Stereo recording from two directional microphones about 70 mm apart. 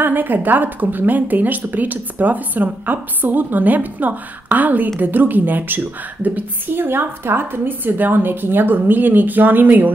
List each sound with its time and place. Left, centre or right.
0.0 s speech: right